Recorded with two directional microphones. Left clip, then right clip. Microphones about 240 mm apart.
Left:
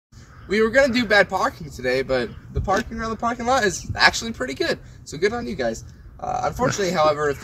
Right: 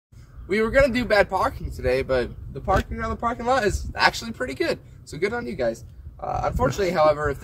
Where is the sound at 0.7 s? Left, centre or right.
Centre.